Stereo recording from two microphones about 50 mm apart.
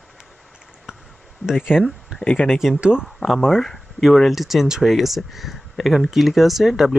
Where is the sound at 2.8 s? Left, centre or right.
Centre.